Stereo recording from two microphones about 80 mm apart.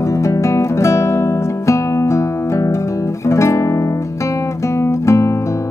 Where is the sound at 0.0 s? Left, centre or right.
Left.